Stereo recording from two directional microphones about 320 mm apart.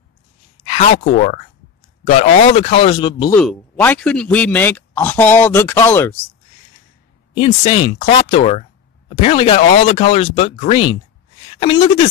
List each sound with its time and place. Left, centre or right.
0.7 s speech: left
3.3 s speech: centre
7.3 s speech: centre